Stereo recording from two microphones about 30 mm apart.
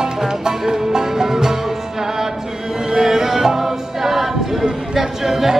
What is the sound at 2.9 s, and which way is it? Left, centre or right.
Music, centre.